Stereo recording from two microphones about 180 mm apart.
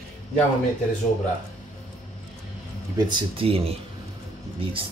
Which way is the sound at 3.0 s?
25° right (ahead or behind).